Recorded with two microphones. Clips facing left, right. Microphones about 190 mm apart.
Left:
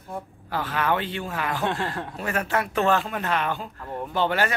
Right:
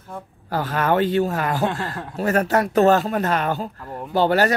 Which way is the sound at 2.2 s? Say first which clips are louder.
Right 8 dB; 40° right (ahead or behind).